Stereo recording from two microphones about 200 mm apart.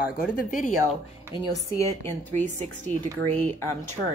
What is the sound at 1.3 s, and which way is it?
A woman's voice, 15° left (ahead or behind).